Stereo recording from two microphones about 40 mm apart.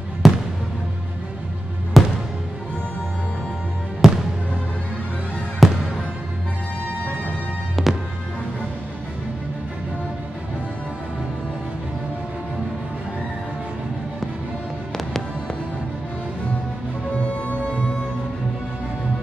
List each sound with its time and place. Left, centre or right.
0.2 s music: centre
2.0 s music: centre
4.0 s fireworks: centre
5.6 s music: centre
7.8 s music: centre
17.2 s music: left